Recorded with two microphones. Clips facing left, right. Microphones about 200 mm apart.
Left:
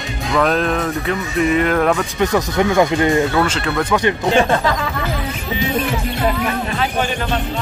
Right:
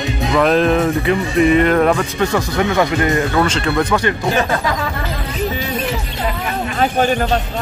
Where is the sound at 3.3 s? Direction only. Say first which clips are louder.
Right 1 dB; 5° left (ahead or behind).